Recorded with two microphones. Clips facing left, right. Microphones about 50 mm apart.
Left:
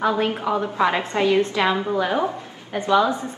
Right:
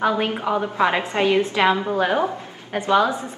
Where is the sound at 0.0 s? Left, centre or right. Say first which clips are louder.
Even; right.